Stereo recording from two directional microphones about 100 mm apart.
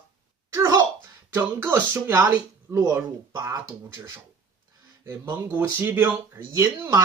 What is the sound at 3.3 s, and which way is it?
Speech, 45° right (ahead or behind).